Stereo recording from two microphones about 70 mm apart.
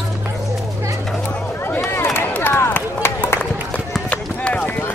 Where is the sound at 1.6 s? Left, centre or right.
Left.